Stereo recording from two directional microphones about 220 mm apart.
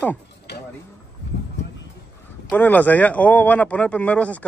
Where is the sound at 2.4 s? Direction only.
10° left (ahead or behind).